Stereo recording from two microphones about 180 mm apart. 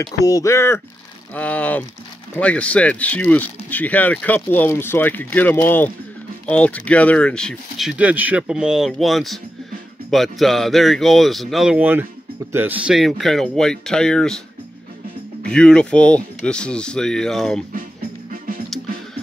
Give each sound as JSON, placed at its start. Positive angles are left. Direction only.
{"t": 0.2, "sound": "speech", "side_deg": 20}
{"t": 15.5, "sound": "speech", "side_deg": 5}